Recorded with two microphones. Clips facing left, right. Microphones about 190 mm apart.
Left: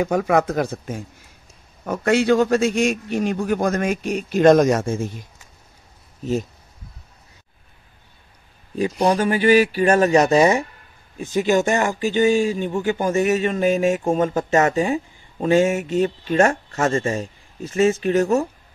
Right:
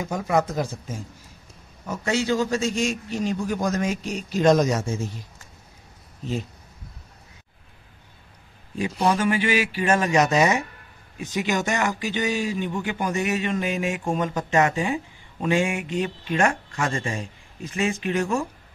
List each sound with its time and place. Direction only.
0.0 s a man's voice: 65° left (ahead or behind)
8.7 s speech: 35° left (ahead or behind)